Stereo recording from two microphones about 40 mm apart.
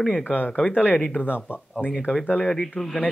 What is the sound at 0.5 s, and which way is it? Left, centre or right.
Speech, left.